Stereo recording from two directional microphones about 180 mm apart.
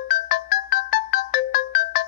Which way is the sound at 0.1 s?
55° left (ahead or behind).